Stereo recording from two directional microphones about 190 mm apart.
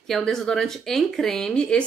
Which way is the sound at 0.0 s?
Centre (ahead or behind).